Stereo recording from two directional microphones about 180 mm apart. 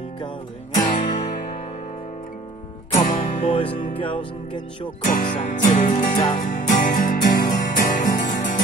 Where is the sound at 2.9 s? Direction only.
50° left (ahead or behind).